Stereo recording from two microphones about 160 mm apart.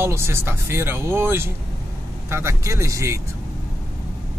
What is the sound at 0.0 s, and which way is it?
Speech, 15° right (ahead or behind).